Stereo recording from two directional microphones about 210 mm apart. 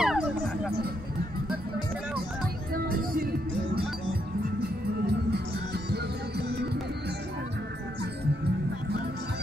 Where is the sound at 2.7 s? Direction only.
45° right (ahead or behind).